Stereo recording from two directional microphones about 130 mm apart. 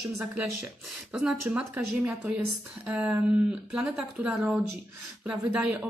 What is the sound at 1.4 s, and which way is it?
Speech, 15° right (ahead or behind).